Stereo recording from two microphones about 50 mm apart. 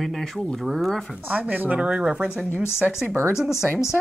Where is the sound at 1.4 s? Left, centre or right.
Right.